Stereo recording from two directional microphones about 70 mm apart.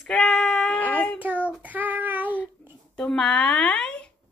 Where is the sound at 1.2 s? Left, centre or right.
Right.